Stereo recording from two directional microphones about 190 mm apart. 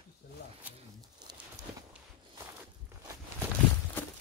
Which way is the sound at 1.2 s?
20° right (ahead or behind).